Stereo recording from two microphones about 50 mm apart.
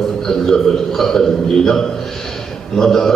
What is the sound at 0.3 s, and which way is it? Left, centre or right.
A man's voice, centre.